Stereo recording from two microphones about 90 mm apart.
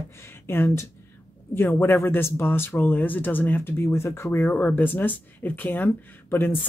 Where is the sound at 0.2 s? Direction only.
25° left (ahead or behind).